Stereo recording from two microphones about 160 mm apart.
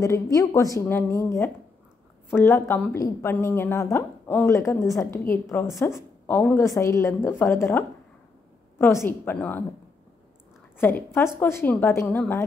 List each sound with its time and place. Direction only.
0.0 s a woman's voice: 20° left (ahead or behind)
10.8 s a woman's voice: 15° left (ahead or behind)